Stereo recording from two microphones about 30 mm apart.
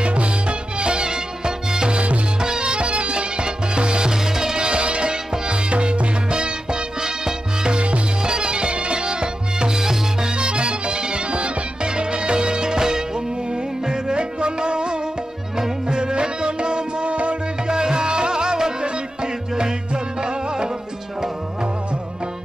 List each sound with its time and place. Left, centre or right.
0.0 s music: right
4.1 s music: centre
4.6 s music: right
7.7 s music: right
8.2 s music: right
10.3 s music: right
17.6 s music: right